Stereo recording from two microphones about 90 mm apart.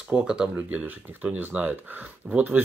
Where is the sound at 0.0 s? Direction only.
10° right (ahead or behind).